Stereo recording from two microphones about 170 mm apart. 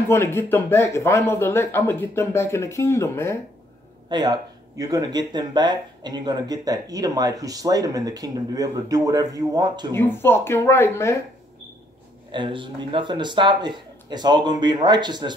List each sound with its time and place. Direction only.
0.1 s speech: 15° left (ahead or behind)
4.1 s speech: 25° right (ahead or behind)
9.9 s speech: 15° left (ahead or behind)
12.3 s speech: 30° right (ahead or behind)